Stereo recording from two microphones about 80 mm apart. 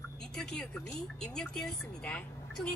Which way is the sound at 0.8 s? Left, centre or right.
Centre.